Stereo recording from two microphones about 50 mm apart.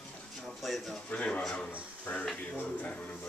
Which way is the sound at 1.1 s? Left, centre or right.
Left.